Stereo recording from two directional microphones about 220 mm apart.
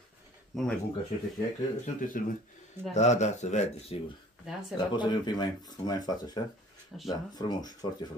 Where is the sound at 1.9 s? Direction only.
35° left (ahead or behind); by 6.4 s 20° left (ahead or behind).